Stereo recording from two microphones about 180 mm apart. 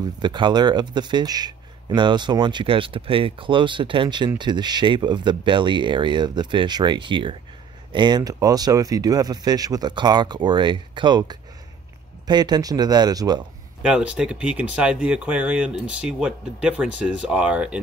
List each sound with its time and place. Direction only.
0.2 s speech: 25° right (ahead or behind)
13.8 s speech: 5° right (ahead or behind)